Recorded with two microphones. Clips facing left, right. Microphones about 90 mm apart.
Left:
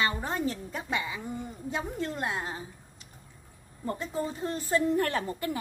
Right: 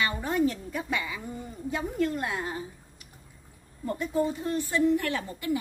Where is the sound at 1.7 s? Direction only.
25° left (ahead or behind).